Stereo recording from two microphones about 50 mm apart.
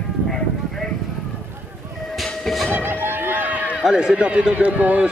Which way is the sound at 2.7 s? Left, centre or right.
Right.